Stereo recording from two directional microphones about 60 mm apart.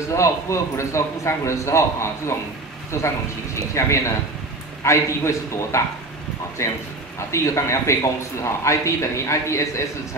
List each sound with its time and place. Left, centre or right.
0.1 s a man's voice: left